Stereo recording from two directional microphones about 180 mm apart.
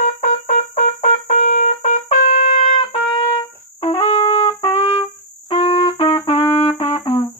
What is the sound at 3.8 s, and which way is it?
Trumpet, 30° left (ahead or behind).